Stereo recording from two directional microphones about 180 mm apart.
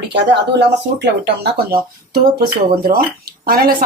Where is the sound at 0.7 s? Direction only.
70° right (ahead or behind).